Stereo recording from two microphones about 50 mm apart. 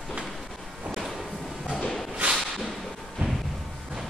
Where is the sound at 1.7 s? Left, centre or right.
Centre.